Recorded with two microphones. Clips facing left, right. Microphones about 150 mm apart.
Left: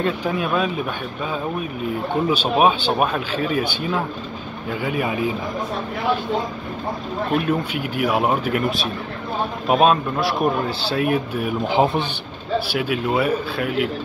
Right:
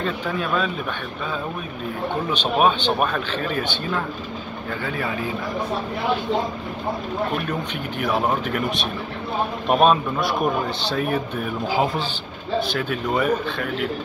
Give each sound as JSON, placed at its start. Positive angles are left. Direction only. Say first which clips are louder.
{"t": 0.0, "sound": "a man's voice", "louder": "left 3 dB", "side_deg": 10}
{"t": 2.3, "sound": "a man's voice", "louder": "left 1 dB", "side_deg": 10}
{"t": 7.4, "sound": "a man's voice", "louder": "left 5 dB", "side_deg": 10}
{"t": 11.7, "sound": "speech", "louder": "left 4 dB", "side_deg": 25}
{"t": 12.7, "sound": "a man's voice", "louder": "left 2 dB", "side_deg": 10}